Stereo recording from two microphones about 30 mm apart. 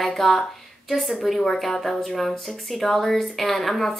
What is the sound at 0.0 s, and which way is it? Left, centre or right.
Speech, centre.